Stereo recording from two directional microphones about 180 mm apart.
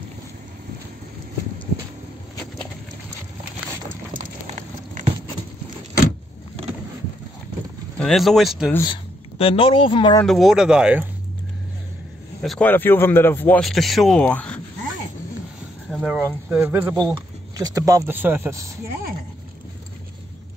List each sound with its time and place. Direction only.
8.0 s speech: centre (ahead or behind)
8.8 s speech: 30° left (ahead or behind)
10.2 s speech: centre (ahead or behind)
12.4 s speech: 5° left (ahead or behind)
15.9 s speech: 5° right (ahead or behind)
17.0 s speech: 20° right (ahead or behind)